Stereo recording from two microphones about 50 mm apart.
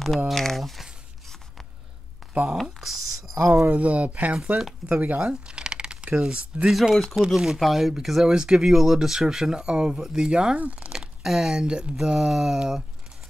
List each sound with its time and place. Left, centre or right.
0.3 s speech: centre
2.5 s speech: centre
3.3 s speech: right
3.6 s speech: right
5.3 s a sound: centre
6.1 s speech: centre
6.7 s speech: centre
10.6 s speech: right
10.9 s speech: centre